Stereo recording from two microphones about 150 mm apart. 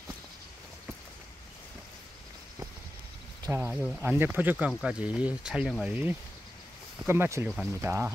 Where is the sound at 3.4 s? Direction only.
15° right (ahead or behind).